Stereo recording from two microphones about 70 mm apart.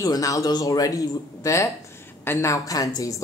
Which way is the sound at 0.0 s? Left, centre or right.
Left.